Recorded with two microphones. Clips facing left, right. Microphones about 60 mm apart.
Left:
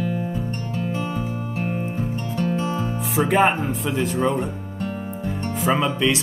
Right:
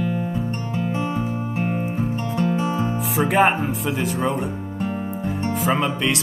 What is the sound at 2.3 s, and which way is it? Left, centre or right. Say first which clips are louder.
Music: right 1 dB; centre.